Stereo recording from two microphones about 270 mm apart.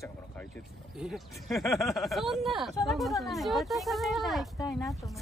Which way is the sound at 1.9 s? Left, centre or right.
Centre.